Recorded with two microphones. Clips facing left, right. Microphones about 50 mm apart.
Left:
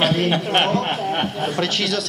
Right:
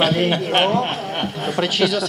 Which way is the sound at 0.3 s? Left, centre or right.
Centre.